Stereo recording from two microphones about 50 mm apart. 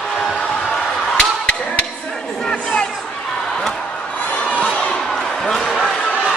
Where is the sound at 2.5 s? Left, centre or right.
Centre.